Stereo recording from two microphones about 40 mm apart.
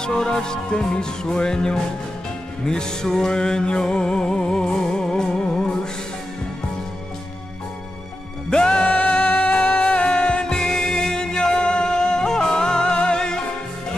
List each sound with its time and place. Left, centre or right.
0.0 s music: centre
8.5 s music: left